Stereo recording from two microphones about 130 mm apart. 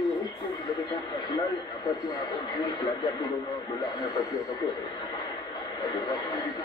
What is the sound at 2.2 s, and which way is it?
Speech, 30° left (ahead or behind).